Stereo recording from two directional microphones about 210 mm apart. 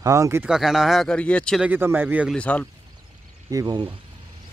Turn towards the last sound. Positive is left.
turn(degrees=-20)  # may be behind; listen again after turning